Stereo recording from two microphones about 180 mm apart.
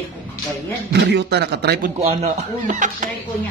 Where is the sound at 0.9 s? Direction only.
70° right (ahead or behind).